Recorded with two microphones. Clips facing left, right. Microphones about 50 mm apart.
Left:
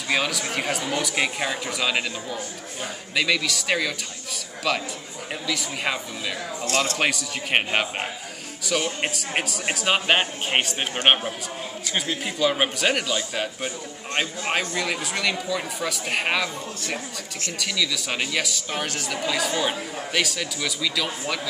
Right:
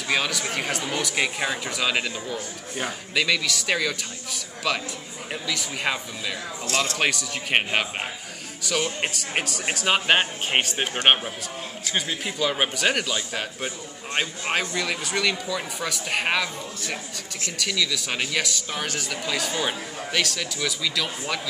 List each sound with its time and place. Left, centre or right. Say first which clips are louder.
0.1 s speech: left 1 dB; centre
6.6 s speech: left 2 dB; left
7.0 s speech: even; centre
11.9 s speech: even; centre